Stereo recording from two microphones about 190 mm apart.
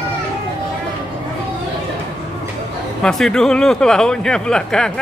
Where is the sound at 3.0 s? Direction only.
5° left (ahead or behind).